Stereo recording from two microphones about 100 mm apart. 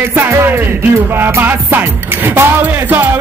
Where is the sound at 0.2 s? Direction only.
20° right (ahead or behind).